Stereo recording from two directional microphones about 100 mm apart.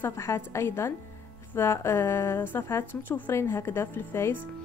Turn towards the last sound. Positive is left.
turn(degrees=25)  # may be behind; listen again after turning